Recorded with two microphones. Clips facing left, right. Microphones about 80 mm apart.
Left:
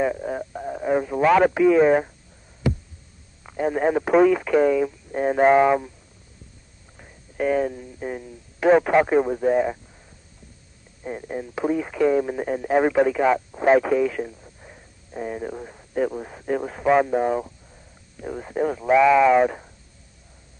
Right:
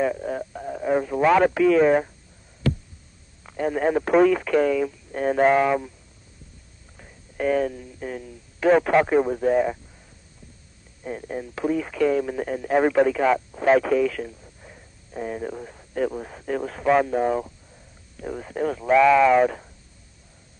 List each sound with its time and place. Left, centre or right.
0.0 s radio: centre
1.5 s speech: centre
2.6 s a sound: centre
3.4 s speech: centre
7.0 s speech: centre
11.1 s speech: centre